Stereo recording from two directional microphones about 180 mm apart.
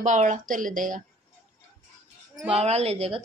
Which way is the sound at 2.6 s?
35° right (ahead or behind).